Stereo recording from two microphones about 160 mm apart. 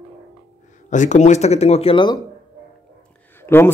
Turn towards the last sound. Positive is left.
turn(degrees=15)  # may be behind; listen again after turning